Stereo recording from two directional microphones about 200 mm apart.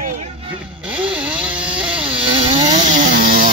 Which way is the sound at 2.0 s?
25° right (ahead or behind).